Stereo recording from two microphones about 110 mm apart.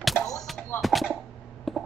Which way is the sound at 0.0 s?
Centre (ahead or behind).